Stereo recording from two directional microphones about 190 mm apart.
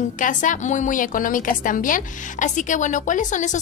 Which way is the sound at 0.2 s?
40° left (ahead or behind).